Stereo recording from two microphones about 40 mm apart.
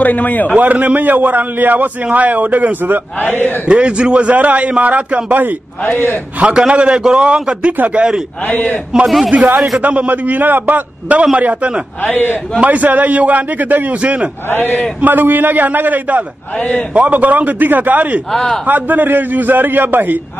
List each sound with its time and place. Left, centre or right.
0.0 s a man's voice: left
0.6 s a man's voice: right
3.6 s a man's voice: right
6.4 s a man's voice: right
8.5 s a man's voice: left
9.0 s speech: centre
9.8 s a man's voice: right
11.3 s a man's voice: right
12.0 s a man's voice: left
12.6 s a man's voice: right
14.5 s a man's voice: left
15.0 s a man's voice: right